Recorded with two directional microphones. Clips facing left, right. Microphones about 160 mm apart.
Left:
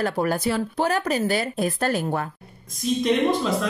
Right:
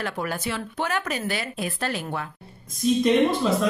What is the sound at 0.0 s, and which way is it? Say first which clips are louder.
Speech: left 6 dB; 40° left (ahead or behind).